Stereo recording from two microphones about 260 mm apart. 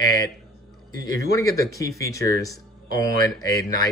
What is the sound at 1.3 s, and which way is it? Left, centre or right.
Speech, centre.